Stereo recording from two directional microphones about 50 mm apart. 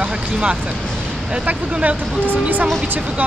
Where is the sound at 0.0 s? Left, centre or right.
Right.